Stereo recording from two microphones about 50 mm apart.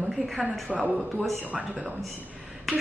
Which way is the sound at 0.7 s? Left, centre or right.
Centre.